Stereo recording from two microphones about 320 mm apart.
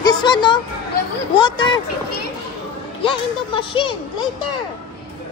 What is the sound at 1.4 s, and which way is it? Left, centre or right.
Speech, centre.